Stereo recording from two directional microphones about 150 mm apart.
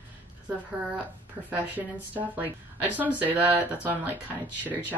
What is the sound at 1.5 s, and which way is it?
Speech, 10° right (ahead or behind).